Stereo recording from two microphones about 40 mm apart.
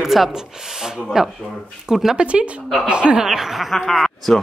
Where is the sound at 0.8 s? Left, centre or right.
Centre.